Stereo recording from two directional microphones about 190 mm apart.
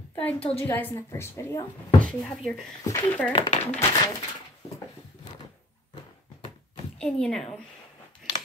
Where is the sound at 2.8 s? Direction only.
15° left (ahead or behind).